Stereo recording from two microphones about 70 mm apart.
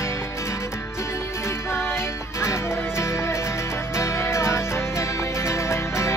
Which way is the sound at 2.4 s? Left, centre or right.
Left.